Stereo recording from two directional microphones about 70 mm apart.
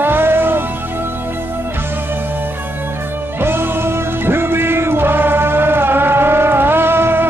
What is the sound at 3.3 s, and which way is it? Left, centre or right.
Music, right.